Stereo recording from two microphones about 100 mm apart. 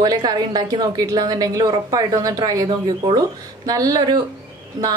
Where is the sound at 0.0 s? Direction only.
40° right (ahead or behind).